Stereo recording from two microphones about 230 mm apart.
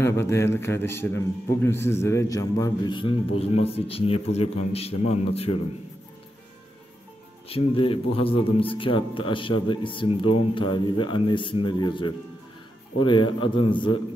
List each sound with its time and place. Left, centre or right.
0.0 s a man's voice: centre
7.4 s a man's voice: left